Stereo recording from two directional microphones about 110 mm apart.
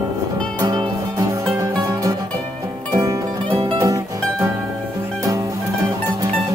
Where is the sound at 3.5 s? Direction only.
55° right (ahead or behind).